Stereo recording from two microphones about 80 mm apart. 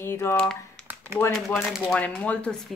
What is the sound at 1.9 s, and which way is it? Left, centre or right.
Speech, centre.